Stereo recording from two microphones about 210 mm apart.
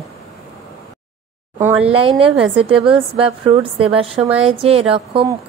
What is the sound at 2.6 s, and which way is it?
A woman's voice, 25° right (ahead or behind).